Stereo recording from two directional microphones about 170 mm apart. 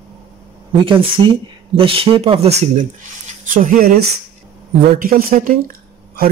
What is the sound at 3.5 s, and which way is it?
Speech, 55° right (ahead or behind).